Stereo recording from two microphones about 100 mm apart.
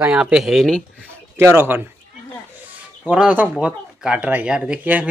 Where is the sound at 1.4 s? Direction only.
20° right (ahead or behind).